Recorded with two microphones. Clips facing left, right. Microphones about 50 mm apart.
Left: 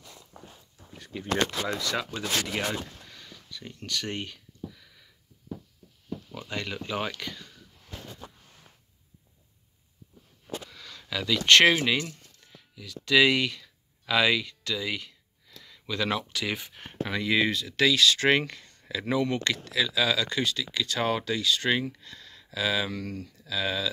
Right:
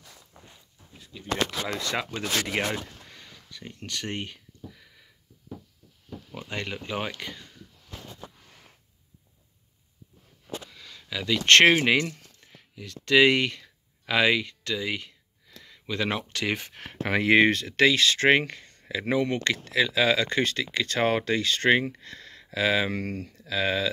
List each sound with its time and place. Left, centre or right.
1.9 s speech: right
6.3 s speech: right
10.7 s a sound: centre
11.4 s speech: right
12.4 s a sound: right
16.3 s speech: right
16.6 s speech: right